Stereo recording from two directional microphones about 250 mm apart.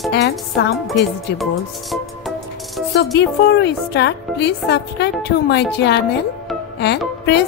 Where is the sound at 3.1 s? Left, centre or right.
Left.